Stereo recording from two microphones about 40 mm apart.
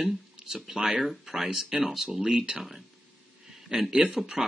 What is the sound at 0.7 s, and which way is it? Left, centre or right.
Speech, centre.